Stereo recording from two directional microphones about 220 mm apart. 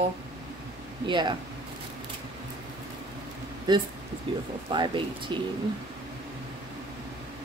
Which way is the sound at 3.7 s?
20° right (ahead or behind).